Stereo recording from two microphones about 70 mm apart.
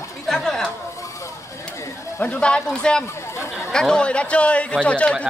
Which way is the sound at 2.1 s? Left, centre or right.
Centre.